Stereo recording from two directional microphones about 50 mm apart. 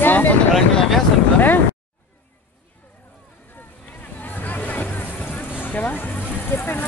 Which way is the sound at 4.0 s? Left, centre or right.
Left.